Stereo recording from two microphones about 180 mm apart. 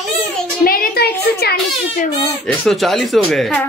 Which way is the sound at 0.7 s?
55° left (ahead or behind).